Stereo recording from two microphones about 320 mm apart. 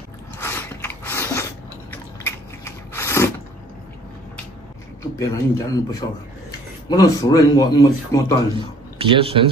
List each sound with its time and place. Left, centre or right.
0.4 s biting: centre
5.3 s speech: centre
8.9 s speech: centre